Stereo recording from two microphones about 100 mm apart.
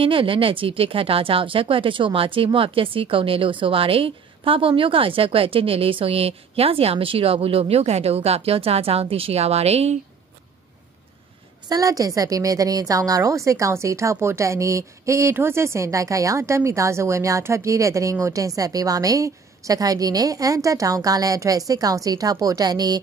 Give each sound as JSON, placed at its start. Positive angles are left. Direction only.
{"t": 0.0, "sound": "speech", "side_deg": -60}
{"t": 11.7, "sound": "a woman's voice", "side_deg": -35}